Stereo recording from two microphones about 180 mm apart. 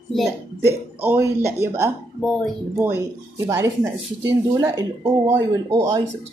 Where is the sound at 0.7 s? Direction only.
15° right (ahead or behind).